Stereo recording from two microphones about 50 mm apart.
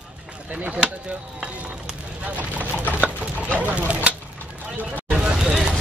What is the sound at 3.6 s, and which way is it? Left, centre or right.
Speech, right.